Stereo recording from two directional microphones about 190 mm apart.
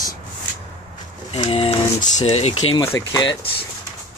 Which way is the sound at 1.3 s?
30° left (ahead or behind).